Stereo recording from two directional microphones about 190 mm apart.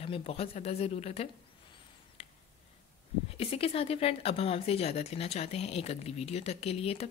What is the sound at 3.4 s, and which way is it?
Speech, 30° left (ahead or behind).